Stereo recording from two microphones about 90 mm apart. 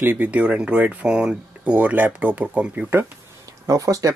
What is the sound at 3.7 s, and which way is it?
Speech, 40° right (ahead or behind).